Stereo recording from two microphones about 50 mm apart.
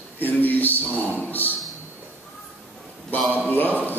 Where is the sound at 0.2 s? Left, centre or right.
Left.